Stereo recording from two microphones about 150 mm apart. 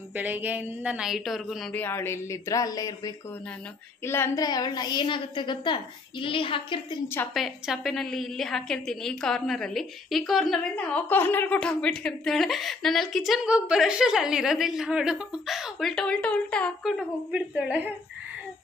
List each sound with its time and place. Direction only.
0.1 s a woman's voice: 10° right (ahead or behind)
1.8 s a woman's voice: 15° left (ahead or behind)
4.5 s a woman's voice: 25° left (ahead or behind)
7.3 s a woman's voice: centre (ahead or behind)